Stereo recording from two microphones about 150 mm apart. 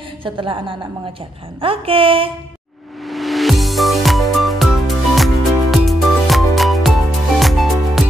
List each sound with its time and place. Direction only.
0.2 s speech: 35° right (ahead or behind)
3.1 s music: centre (ahead or behind)